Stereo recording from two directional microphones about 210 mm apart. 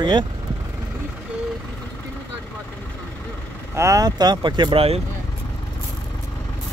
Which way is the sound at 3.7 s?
15° right (ahead or behind).